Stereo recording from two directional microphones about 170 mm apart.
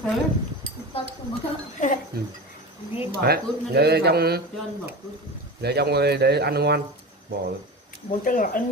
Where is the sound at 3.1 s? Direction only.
65° right (ahead or behind).